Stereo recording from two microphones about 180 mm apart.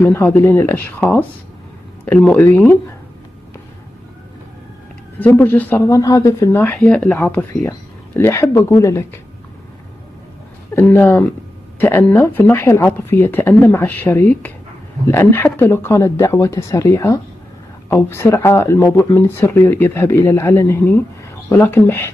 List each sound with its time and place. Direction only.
0.0 s speech: 15° left (ahead or behind)
2.0 s speech: 5° left (ahead or behind)
5.2 s speech: 10° left (ahead or behind)
10.7 s speech: 10° left (ahead or behind)